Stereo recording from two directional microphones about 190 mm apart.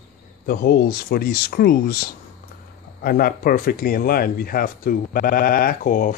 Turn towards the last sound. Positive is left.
turn(degrees=45)  # may be behind; listen again after turning